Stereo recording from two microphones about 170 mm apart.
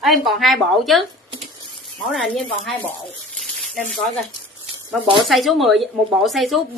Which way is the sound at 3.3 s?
Centre (ahead or behind).